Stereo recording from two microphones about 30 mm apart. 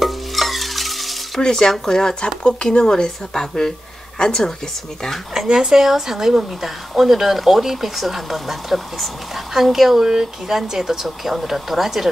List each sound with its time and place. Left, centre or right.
0.0 s stir: centre
1.4 s speech: centre
2.4 s speech: left
2.9 s speech: left
5.5 s speech: right